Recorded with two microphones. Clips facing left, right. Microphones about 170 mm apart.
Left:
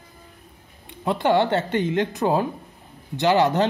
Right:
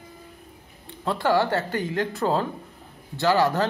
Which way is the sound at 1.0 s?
20° left (ahead or behind).